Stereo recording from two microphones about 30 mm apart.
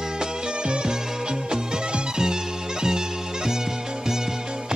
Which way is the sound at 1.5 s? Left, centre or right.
Right.